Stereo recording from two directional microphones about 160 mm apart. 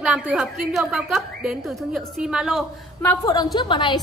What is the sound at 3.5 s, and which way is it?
Speech, 30° left (ahead or behind).